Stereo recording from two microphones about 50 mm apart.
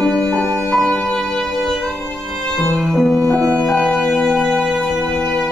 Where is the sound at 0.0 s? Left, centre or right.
Centre.